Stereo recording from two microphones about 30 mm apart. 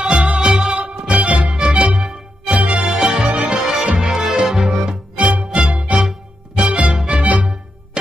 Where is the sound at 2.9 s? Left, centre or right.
Right.